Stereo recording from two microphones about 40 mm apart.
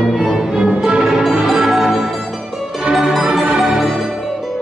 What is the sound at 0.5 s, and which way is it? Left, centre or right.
Music, centre.